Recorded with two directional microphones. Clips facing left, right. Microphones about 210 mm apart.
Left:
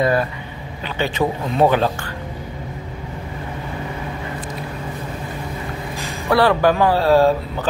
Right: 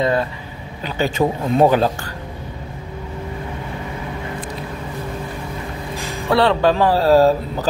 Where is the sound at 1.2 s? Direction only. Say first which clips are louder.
Right 2 dB; 10° right (ahead or behind).